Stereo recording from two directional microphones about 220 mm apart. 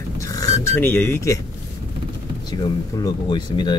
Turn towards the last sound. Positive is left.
turn(degrees=20)  # may be behind; listen again after turning